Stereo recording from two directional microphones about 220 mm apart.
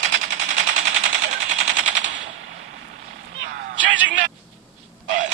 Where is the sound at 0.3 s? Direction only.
35° right (ahead or behind).